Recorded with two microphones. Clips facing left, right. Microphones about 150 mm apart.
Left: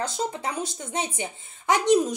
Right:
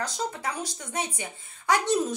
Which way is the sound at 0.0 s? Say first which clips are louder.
Left 3 dB; 25° left (ahead or behind).